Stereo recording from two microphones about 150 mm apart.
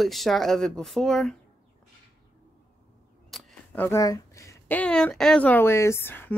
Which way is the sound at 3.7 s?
15° left (ahead or behind).